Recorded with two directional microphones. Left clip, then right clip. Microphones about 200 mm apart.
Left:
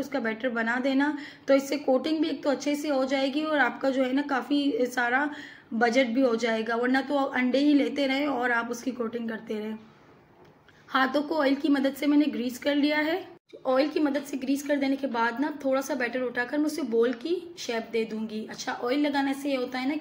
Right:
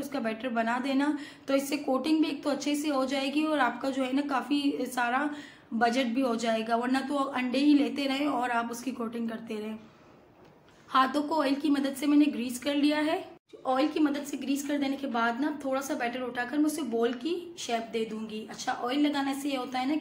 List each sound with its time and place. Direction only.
0.1 s a woman's voice: 15° left (ahead or behind)
10.9 s a woman's voice: 15° left (ahead or behind)